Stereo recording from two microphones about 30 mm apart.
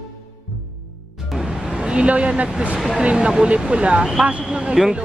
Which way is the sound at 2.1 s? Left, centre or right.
Right.